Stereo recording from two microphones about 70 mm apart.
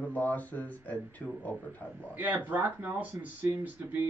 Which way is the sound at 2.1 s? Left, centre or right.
Right.